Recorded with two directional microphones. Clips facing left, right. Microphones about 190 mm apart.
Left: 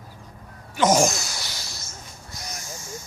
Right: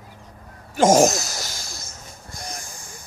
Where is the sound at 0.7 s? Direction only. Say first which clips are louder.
Right 4 dB; 45° right (ahead or behind).